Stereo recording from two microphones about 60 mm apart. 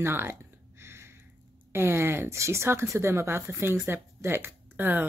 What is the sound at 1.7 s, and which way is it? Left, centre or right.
Speech, right.